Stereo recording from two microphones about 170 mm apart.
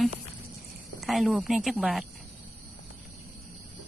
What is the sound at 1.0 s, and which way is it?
Speech, centre (ahead or behind).